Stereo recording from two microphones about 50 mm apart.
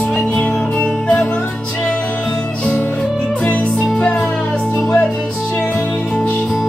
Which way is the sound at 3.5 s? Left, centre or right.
Left.